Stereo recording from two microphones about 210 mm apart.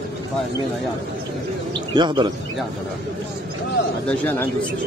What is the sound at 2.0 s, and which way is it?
Speech, 20° right (ahead or behind).